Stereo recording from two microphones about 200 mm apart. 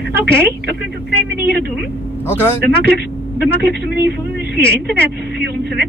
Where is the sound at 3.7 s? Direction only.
55° right (ahead or behind).